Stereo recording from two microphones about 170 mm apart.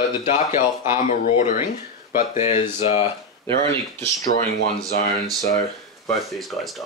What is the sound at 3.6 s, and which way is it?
Speech, 15° left (ahead or behind).